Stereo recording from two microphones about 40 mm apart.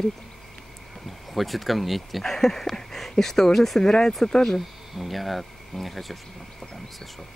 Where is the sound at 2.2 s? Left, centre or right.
Centre.